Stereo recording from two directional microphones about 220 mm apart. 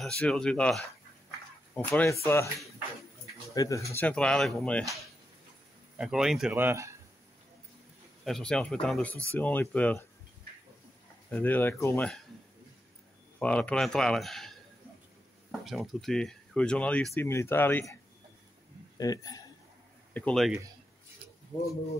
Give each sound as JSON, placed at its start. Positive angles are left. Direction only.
{"t": 0.0, "sound": "speech", "side_deg": 5}
{"t": 3.5, "sound": "speech", "side_deg": 15}
{"t": 5.9, "sound": "speech", "side_deg": 0}
{"t": 8.3, "sound": "speech", "side_deg": 5}
{"t": 11.2, "sound": "speech", "side_deg": 10}
{"t": 13.4, "sound": "speech", "side_deg": 5}
{"t": 15.6, "sound": "speech", "side_deg": 0}
{"t": 18.9, "sound": "speech", "side_deg": 15}
{"t": 20.2, "sound": "speech", "side_deg": 5}